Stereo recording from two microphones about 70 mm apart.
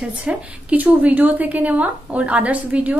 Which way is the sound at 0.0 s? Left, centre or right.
Centre.